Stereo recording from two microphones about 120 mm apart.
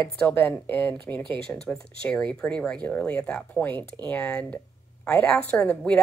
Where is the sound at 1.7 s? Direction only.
10° left (ahead or behind).